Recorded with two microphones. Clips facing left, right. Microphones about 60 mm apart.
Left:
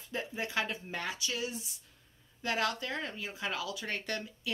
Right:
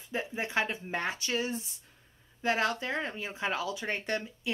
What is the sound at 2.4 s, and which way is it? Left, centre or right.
Speech, right.